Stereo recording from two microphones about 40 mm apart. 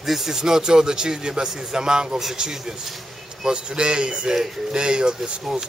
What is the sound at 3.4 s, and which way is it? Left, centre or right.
A man's voice, right.